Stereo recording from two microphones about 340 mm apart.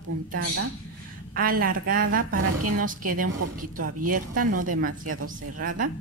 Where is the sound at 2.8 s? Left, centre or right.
Right.